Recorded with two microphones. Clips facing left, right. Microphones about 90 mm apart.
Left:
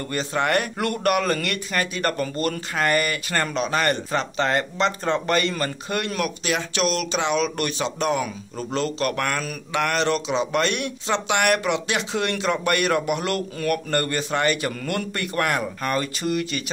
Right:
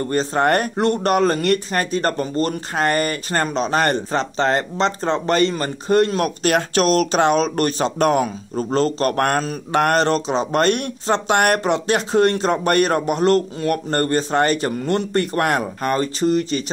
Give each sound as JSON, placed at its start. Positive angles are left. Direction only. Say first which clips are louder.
{"t": 0.0, "sound": "speech", "louder": "right 6 dB", "side_deg": -35}
{"t": 0.8, "sound": "speech", "louder": "right 6 dB", "side_deg": -30}
{"t": 6.4, "sound": "speech", "louder": "right 8 dB", "side_deg": -45}